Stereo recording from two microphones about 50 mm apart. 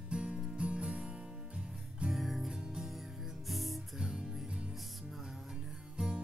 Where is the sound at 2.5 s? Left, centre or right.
Centre.